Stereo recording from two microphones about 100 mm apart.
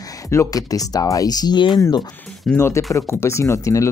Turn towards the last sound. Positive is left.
turn(degrees=30)  # may be behind; listen again after turning